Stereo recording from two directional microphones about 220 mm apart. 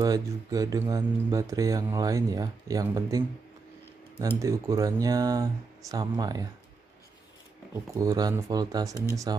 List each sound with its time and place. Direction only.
0.0 s speech: 15° right (ahead or behind)
7.9 s speech: 15° right (ahead or behind)